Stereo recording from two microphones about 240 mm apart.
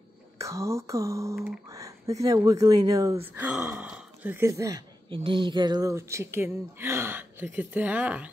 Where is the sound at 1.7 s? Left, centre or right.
Centre.